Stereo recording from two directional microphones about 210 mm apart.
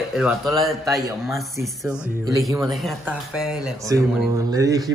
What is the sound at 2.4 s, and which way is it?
A man's voice, centre (ahead or behind).